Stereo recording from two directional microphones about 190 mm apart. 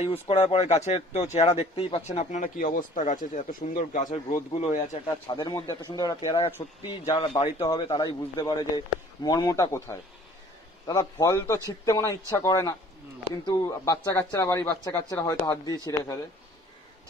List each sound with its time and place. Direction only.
0.0 s speech: 30° left (ahead or behind)
5.2 s a man's voice: 20° left (ahead or behind)
7.5 s a man's voice: 20° left (ahead or behind)